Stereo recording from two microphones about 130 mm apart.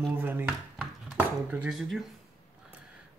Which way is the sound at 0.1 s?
15° right (ahead or behind).